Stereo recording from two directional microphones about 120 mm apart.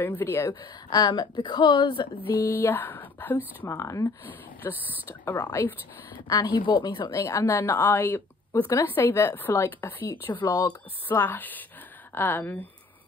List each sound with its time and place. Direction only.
0.0 s a woman's voice: 20° left (ahead or behind); by 2.0 s 40° left (ahead or behind)
2.2 s speech: 15° right (ahead or behind)
2.5 s a woman's voice: 20° left (ahead or behind); by 7.2 s 35° left (ahead or behind)
7.2 s a woman's voice: 25° left (ahead or behind)
10.5 s a woman's voice: 30° left (ahead or behind)
11.1 s a woman's voice: 15° left (ahead or behind)